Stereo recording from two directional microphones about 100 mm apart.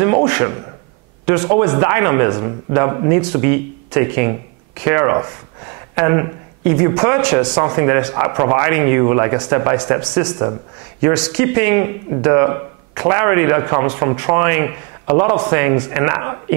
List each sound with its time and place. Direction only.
0.0 s a sound: 20° right (ahead or behind)
1.2 s a man's voice: 20° right (ahead or behind)
3.2 s a man's voice: 15° right (ahead or behind)